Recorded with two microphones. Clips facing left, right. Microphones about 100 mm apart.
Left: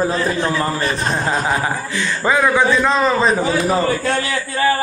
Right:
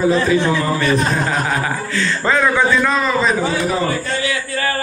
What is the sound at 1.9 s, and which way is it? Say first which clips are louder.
A man's voice: right 1 dB; 15° left (ahead or behind).